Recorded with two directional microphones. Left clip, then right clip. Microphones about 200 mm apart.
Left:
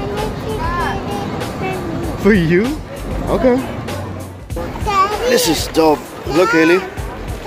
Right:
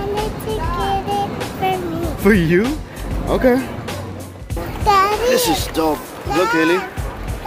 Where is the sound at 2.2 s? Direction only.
15° right (ahead or behind).